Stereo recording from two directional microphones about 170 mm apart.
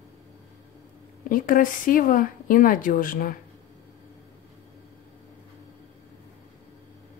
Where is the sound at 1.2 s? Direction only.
55° left (ahead or behind).